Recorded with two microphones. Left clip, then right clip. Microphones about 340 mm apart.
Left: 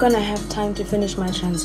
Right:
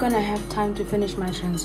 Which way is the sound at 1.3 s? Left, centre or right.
Right.